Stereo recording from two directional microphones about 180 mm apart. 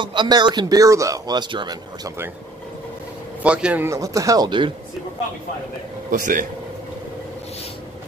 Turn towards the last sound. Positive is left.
turn(degrees=-50)  # may be behind; listen again after turning